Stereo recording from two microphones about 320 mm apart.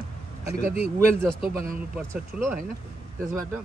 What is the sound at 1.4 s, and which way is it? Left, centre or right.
Speech, right.